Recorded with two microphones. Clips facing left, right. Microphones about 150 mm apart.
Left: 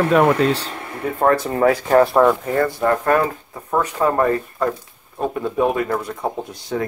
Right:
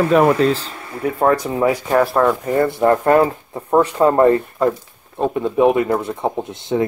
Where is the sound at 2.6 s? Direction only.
25° right (ahead or behind).